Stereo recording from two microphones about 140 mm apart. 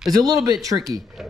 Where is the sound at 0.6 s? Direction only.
25° right (ahead or behind).